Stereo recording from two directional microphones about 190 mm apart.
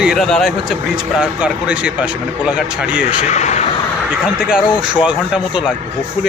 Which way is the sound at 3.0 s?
35° left (ahead or behind).